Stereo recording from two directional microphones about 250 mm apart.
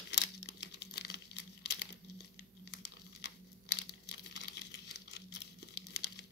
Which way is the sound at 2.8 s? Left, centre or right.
Left.